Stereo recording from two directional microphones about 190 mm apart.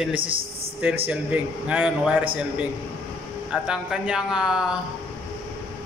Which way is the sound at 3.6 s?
5° right (ahead or behind).